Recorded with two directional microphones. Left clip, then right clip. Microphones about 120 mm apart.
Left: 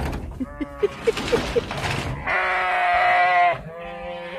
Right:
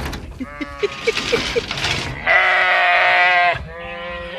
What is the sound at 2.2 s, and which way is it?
Goat, 45° right (ahead or behind).